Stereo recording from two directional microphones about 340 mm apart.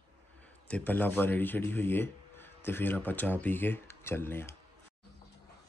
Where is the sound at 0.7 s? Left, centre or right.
Centre.